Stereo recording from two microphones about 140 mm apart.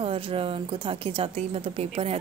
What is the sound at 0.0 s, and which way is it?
A woman's voice, 40° right (ahead or behind).